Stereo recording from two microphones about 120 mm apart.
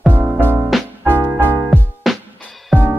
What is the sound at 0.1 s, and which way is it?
Music, 15° right (ahead or behind).